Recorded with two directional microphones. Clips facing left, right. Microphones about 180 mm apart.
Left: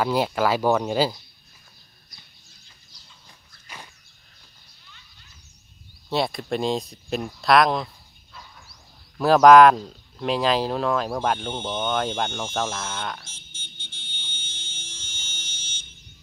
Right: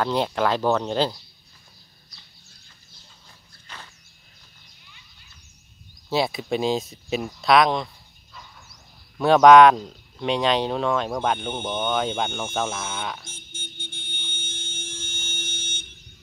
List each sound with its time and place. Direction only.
0.0 s speech: 5° left (ahead or behind)
3.6 s a sound: 10° left (ahead or behind)
6.0 s speech: centre (ahead or behind)
9.2 s speech: centre (ahead or behind)
11.5 s speech: 10° right (ahead or behind)
11.8 s speech: centre (ahead or behind)
13.3 s a sound: 55° right (ahead or behind)